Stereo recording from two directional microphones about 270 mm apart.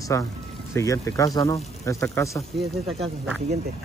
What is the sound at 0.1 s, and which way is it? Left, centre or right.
Speech, centre.